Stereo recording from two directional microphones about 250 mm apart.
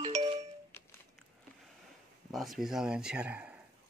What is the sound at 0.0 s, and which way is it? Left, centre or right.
Music, centre.